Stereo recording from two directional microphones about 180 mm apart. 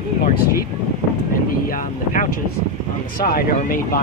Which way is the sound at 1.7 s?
50° left (ahead or behind).